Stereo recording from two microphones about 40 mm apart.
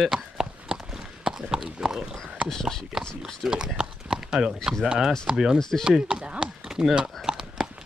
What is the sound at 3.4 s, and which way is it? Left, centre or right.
Speech, centre.